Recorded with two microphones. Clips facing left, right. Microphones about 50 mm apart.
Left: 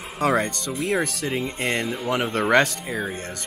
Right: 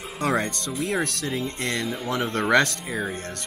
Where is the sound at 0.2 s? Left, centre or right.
Centre.